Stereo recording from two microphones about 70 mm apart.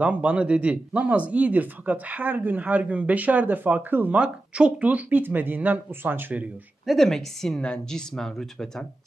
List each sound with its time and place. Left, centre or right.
0.0 s speech: right
4.1 s speech: centre
6.9 s a woman's voice: centre